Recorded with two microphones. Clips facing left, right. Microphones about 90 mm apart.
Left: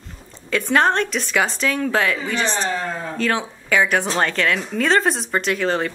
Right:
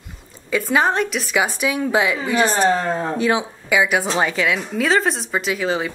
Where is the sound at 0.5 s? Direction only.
5° right (ahead or behind).